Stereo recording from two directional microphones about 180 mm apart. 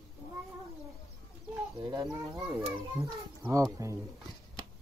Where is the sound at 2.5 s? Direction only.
15° right (ahead or behind).